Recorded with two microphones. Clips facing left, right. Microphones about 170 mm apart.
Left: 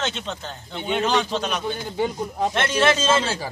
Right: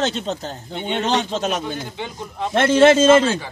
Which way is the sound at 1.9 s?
40° left (ahead or behind).